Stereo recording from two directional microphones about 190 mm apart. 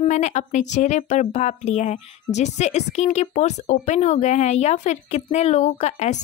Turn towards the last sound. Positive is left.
turn(degrees=35)  # may be behind; listen again after turning